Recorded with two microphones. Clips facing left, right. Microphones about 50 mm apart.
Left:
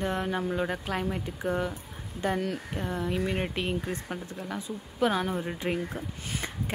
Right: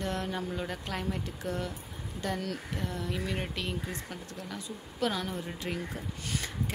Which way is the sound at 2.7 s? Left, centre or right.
Left.